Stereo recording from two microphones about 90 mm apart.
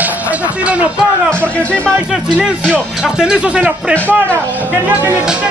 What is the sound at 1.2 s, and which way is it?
Music, 15° left (ahead or behind).